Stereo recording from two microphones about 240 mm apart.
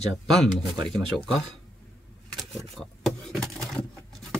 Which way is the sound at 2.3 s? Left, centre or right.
Centre.